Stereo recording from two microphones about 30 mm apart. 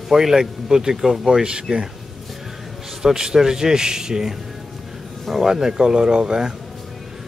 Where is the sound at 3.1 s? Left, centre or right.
Right.